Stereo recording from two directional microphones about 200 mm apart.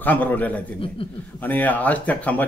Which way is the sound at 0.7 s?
25° left (ahead or behind).